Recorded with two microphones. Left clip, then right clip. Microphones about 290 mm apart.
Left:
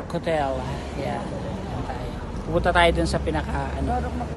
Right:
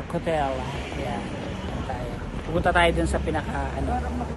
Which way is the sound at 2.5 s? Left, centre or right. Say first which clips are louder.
Left 2 dB; centre.